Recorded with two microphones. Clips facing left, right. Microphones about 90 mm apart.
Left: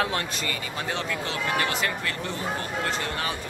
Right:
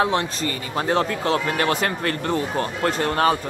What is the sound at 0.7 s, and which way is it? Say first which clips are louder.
A man's voice: right 11 dB; 40° right (ahead or behind).